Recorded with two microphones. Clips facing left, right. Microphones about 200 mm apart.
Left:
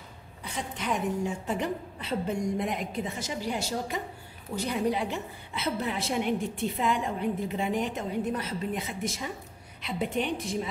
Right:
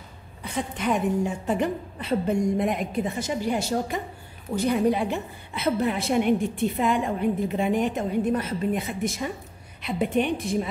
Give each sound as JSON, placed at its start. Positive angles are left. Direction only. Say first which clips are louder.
{"t": 0.4, "sound": "a woman's voice", "louder": "right 6 dB", "side_deg": -55}